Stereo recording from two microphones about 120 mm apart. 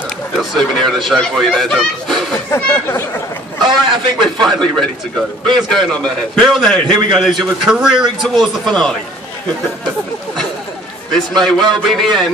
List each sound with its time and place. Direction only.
0.4 s speech: centre (ahead or behind)
2.5 s speech: 20° left (ahead or behind)
3.6 s a man's voice: 40° right (ahead or behind)
4.4 s speech: centre (ahead or behind)
11.4 s speech: centre (ahead or behind)